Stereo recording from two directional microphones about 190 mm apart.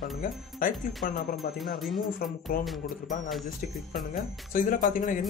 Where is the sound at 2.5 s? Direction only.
50° left (ahead or behind).